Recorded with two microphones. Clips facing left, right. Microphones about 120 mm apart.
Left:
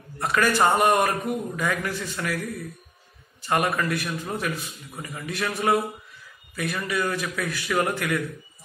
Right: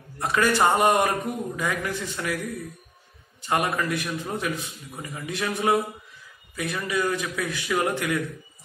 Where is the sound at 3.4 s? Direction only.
20° right (ahead or behind).